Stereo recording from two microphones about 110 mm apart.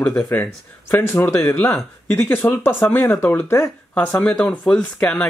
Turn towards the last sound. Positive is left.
turn(degrees=5)  # may be behind; listen again after turning